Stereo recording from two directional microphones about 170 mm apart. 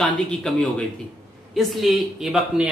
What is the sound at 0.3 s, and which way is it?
Speech, 5° left (ahead or behind).